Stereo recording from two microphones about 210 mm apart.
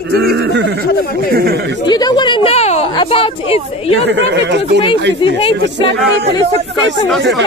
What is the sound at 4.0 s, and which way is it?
Speech, 55° right (ahead or behind).